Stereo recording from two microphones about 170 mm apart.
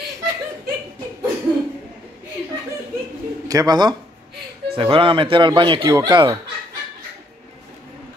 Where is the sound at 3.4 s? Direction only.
20° right (ahead or behind).